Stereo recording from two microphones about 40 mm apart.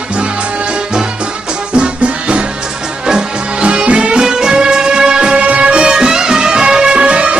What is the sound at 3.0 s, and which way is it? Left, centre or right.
Music, right.